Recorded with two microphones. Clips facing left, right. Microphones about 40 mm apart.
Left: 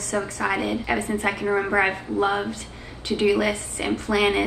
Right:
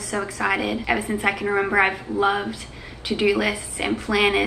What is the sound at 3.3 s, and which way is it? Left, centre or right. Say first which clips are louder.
A woman's voice: even; right.